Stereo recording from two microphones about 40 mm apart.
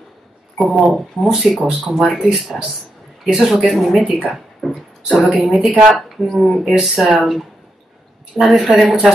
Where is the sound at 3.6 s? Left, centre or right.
Centre.